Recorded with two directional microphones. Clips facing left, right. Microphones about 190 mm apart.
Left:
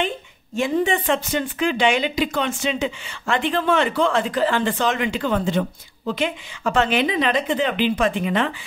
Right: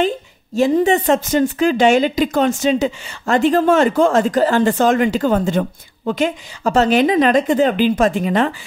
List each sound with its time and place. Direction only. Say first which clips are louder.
0.6 s speech: right 6 dB; 40° right (ahead or behind)